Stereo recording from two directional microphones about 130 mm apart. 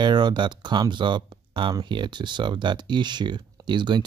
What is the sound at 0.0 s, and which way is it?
Speech, 35° right (ahead or behind).